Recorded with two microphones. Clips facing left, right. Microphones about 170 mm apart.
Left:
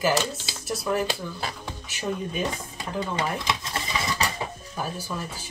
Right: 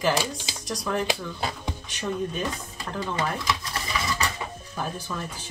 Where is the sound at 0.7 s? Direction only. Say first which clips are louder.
Left 2 dB; 5° left (ahead or behind).